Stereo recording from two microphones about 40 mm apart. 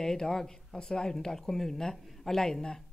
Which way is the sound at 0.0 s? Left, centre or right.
Centre.